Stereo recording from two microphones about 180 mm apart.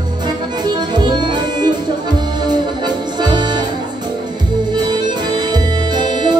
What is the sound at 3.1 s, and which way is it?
Accordion, 25° right (ahead or behind).